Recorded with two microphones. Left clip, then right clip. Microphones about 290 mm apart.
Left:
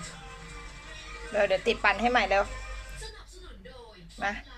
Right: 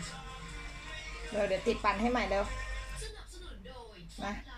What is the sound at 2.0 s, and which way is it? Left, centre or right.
Speech, left.